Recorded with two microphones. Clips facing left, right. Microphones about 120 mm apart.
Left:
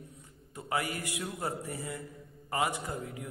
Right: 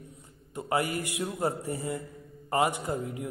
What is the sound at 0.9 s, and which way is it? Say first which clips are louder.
A man's voice: right 5 dB; 25° right (ahead or behind).